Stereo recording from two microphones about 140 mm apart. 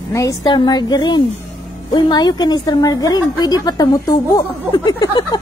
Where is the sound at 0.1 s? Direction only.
25° left (ahead or behind).